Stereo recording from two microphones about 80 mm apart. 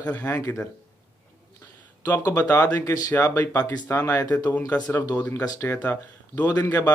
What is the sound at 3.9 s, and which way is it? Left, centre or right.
Speech, left.